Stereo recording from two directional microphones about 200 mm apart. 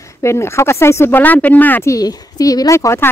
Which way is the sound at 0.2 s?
15° left (ahead or behind).